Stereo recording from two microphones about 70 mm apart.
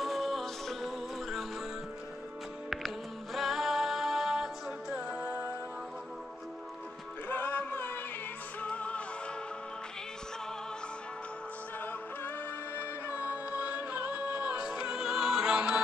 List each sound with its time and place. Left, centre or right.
0.0 s music: centre
3.3 s music: centre
7.2 s music: left
13.1 s music: right